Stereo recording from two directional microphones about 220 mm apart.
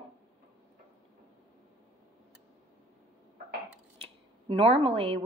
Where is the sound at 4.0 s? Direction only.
25° right (ahead or behind).